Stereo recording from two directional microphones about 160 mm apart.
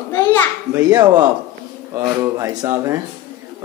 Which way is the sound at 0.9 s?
25° right (ahead or behind).